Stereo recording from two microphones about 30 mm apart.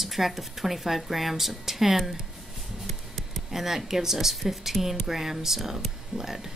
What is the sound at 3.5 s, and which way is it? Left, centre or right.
Speech, centre.